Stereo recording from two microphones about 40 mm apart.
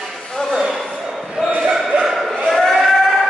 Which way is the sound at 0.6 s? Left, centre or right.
Centre.